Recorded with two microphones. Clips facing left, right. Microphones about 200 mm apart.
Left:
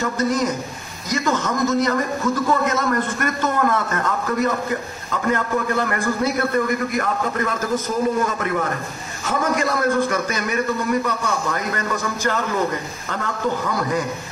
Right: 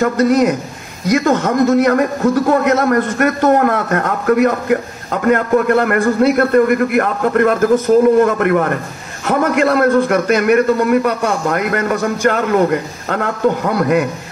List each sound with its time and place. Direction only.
0.0 s a man's voice: 65° right (ahead or behind)